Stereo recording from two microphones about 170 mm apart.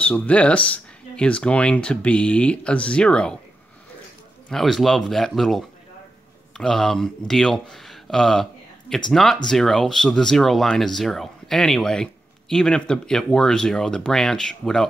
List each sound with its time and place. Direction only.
0.0 s speech: 5° left (ahead or behind)
4.5 s speech: centre (ahead or behind)